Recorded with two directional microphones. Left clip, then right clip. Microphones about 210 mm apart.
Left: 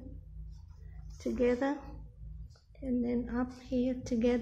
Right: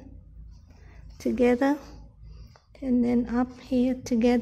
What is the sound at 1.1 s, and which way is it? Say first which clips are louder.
A woman's voice: right 7 dB; 45° right (ahead or behind).